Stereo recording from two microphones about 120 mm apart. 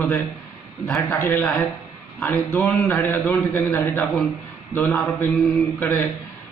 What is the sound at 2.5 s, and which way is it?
A man's voice, 15° left (ahead or behind).